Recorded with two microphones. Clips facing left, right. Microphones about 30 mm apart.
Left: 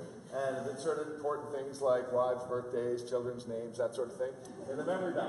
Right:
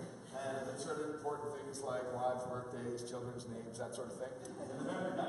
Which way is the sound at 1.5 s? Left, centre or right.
Centre.